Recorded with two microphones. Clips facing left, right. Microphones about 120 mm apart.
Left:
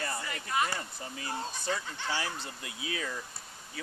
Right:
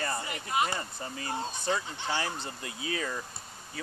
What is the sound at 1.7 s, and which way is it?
Speech, 20° right (ahead or behind).